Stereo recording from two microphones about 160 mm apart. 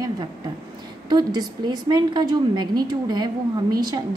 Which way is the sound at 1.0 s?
25° right (ahead or behind).